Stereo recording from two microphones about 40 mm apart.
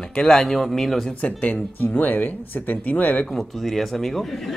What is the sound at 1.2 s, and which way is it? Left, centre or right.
Speech, left.